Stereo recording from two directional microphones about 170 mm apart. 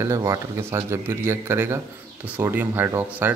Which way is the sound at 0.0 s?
15° right (ahead or behind).